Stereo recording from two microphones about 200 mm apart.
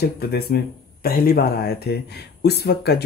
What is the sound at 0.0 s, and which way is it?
Speech, 50° left (ahead or behind).